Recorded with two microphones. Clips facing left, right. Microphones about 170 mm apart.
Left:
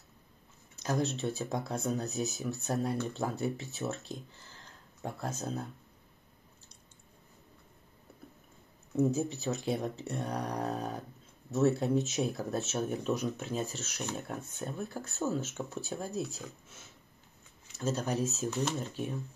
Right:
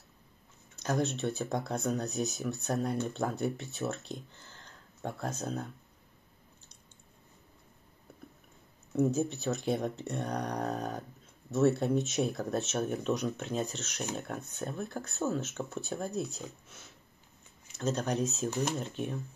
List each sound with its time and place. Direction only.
0.8 s speech: 5° left (ahead or behind)
9.1 s speech: 5° left (ahead or behind)
17.7 s speech: 5° left (ahead or behind)
18.5 s speech: 10° right (ahead or behind)
18.8 s speech: 5° left (ahead or behind)